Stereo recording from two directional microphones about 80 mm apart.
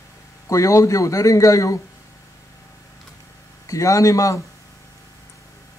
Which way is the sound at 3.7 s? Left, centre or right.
Left.